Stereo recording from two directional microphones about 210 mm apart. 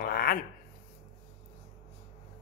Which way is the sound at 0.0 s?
45° left (ahead or behind).